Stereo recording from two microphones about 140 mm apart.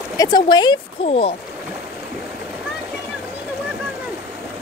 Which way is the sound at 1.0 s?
45° left (ahead or behind).